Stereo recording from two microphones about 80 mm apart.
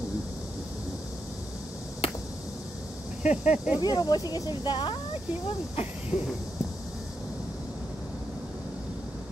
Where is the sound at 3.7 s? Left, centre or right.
Left.